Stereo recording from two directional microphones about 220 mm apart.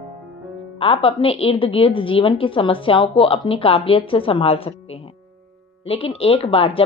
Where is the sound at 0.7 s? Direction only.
25° left (ahead or behind).